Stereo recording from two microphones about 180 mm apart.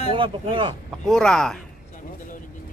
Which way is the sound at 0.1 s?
30° right (ahead or behind).